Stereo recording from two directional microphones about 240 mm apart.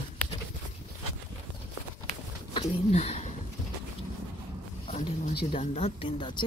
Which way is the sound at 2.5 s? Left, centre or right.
Left.